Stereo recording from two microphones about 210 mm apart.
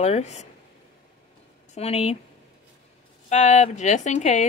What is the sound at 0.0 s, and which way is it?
Speech, 30° left (ahead or behind).